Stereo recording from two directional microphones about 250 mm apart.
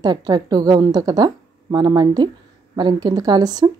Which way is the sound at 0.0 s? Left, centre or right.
Centre.